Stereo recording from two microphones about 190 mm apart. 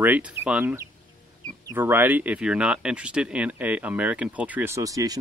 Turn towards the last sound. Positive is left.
turn(degrees=-20)  # may be behind; listen again after turning